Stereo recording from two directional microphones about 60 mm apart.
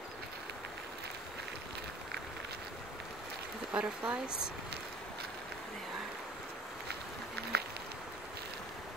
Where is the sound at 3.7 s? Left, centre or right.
Centre.